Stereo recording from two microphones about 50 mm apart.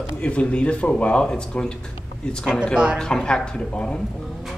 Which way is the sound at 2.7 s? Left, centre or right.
Centre.